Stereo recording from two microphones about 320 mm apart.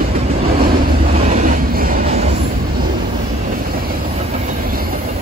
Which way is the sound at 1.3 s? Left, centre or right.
Right.